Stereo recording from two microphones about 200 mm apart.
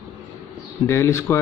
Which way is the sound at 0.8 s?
15° left (ahead or behind).